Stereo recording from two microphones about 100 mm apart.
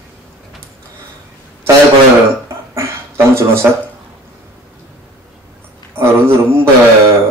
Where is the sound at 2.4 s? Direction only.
25° right (ahead or behind).